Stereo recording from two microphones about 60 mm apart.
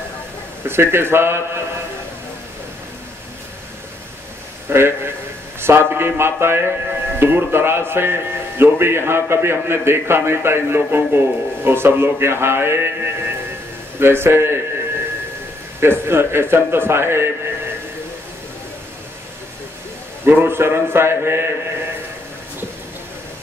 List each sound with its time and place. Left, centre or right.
0.7 s a man's voice: right
4.6 s a man's voice: right
15.8 s a man's voice: right
20.2 s a man's voice: right